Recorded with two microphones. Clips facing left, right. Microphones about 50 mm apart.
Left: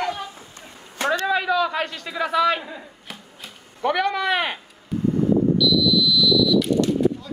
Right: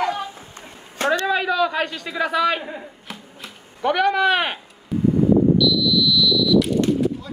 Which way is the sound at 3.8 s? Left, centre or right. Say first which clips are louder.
Right 3 dB; right.